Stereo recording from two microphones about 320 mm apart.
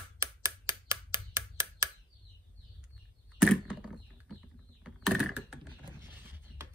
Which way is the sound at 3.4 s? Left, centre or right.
Centre.